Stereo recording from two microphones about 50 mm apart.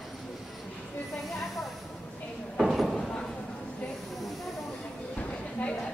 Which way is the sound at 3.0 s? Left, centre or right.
Centre.